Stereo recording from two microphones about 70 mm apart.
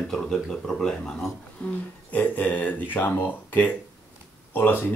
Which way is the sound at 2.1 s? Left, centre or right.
Left.